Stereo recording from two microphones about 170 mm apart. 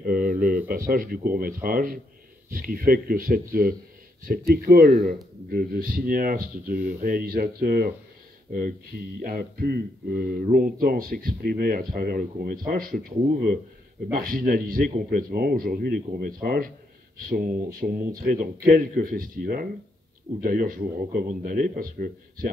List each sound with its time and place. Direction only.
0.0 s speech: 55° right (ahead or behind)
8.5 s speech: 55° right (ahead or behind)